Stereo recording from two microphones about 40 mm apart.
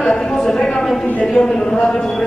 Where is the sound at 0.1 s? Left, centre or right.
Centre.